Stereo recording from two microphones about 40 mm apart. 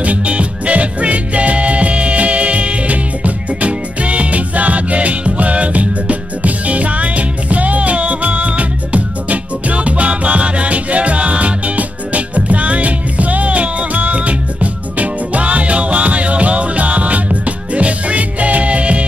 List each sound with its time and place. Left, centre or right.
0.0 s music: right